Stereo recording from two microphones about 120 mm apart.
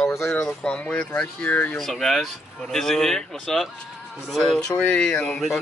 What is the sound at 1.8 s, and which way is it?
Speech, centre (ahead or behind).